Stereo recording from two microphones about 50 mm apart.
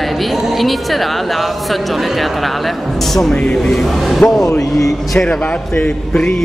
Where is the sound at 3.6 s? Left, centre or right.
Centre.